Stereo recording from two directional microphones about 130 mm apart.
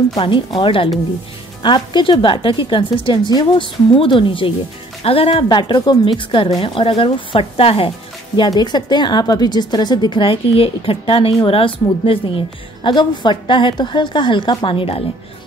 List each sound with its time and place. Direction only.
0.6 s a woman's voice: 45° left (ahead or behind)
5.5 s a woman's voice: 35° left (ahead or behind)
8.4 s a woman's voice: 35° left (ahead or behind)